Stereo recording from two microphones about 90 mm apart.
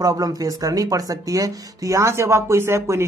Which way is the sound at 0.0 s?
45° right (ahead or behind).